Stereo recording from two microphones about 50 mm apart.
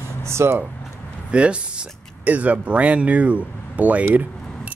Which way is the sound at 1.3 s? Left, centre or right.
Right.